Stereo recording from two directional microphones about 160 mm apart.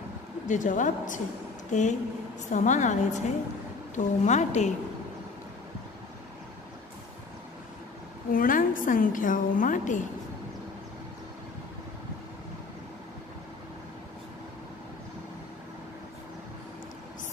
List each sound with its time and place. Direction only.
0.5 s a woman's voice: 50° left (ahead or behind)
8.3 s a woman's voice: 60° left (ahead or behind)